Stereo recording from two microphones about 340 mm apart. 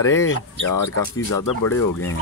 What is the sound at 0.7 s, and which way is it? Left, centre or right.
Speech, left.